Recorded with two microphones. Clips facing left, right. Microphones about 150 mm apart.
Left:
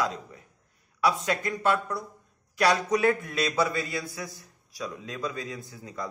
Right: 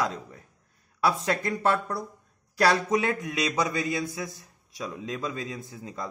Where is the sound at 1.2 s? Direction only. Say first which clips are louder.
Right 2 dB; 30° right (ahead or behind).